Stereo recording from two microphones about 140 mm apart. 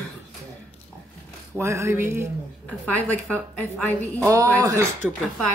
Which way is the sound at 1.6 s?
20° right (ahead or behind).